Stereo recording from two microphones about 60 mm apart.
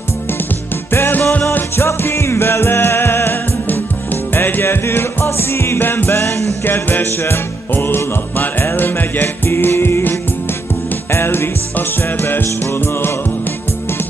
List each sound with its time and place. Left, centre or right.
0.9 s music: left
6.6 s music: left